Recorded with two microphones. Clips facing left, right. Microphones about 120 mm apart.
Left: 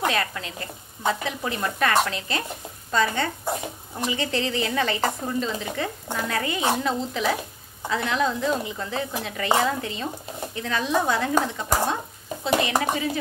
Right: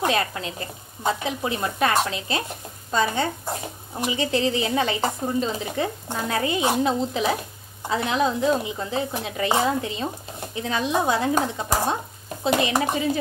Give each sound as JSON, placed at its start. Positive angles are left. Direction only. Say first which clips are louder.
{"t": 0.0, "sound": "a woman's voice", "louder": "right 2 dB", "side_deg": -25}
{"t": 5.4, "sound": "stir", "louder": "right 2 dB", "side_deg": -30}
{"t": 6.0, "sound": "speech", "louder": "right 2 dB", "side_deg": -20}